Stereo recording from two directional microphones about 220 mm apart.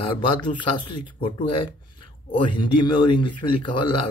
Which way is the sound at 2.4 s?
20° left (ahead or behind).